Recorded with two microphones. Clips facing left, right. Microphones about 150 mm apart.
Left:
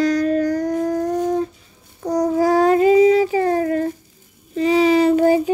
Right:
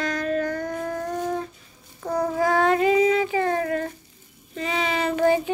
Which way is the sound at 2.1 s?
40° left (ahead or behind).